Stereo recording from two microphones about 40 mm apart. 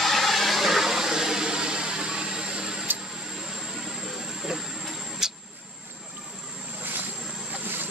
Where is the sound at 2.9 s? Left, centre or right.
Right.